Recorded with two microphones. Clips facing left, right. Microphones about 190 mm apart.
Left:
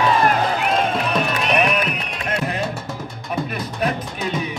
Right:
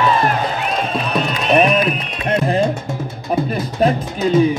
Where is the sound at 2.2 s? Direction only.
30° right (ahead or behind).